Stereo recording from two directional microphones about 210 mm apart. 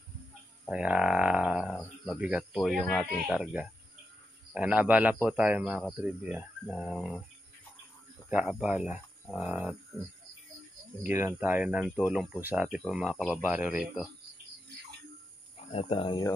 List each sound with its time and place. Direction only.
0.7 s speech: 5° right (ahead or behind)
8.3 s speech: 5° right (ahead or behind)
11.1 s speech: 10° right (ahead or behind)
15.7 s speech: 25° left (ahead or behind)